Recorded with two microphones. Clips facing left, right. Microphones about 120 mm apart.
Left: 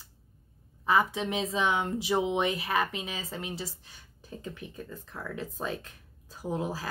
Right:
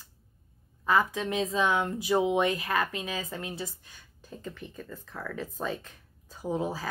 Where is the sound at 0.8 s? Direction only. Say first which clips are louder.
Even; 15° left (ahead or behind).